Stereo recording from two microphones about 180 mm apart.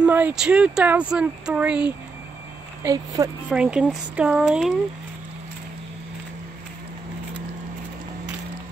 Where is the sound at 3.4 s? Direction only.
5° right (ahead or behind).